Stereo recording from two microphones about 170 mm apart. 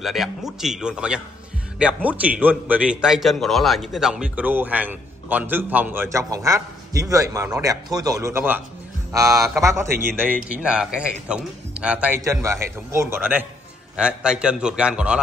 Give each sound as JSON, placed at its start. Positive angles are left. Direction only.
{"t": 0.0, "sound": "a man's voice", "side_deg": 0}
{"t": 12.2, "sound": "a man's voice", "side_deg": -20}